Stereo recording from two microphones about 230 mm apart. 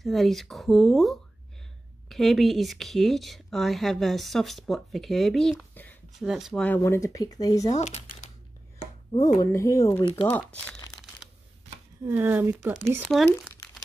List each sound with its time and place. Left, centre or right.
0.0 s speech: centre
7.6 s speech: left
10.2 s speech: centre
12.1 s speech: centre